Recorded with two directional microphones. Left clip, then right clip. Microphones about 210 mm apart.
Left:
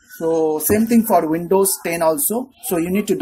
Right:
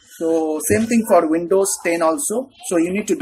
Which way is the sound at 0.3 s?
35° left (ahead or behind).